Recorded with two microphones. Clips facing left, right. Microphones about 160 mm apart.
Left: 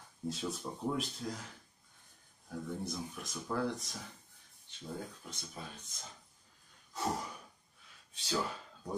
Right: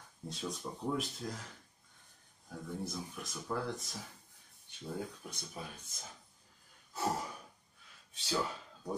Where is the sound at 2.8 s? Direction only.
Centre (ahead or behind).